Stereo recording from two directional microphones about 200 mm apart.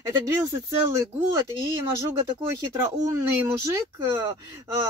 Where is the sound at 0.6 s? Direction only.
15° right (ahead or behind).